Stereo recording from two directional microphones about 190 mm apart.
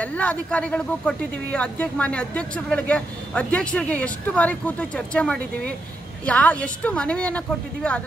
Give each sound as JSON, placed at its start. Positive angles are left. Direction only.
{"t": 0.0, "sound": "speech", "side_deg": 5}